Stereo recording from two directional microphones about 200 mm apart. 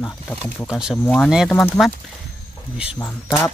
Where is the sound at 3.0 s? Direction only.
5° left (ahead or behind).